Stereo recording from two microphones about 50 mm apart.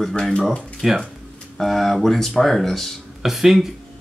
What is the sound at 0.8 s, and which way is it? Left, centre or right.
Speech, centre.